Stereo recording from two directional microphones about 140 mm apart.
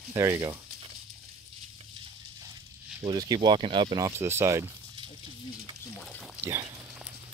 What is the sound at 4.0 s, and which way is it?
Speech, 20° right (ahead or behind).